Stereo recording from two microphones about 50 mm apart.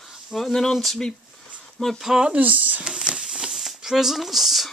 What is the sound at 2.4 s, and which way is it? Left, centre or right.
Speech, right.